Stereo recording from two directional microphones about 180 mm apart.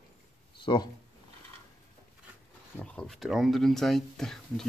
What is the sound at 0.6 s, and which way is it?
Speech, 25° left (ahead or behind).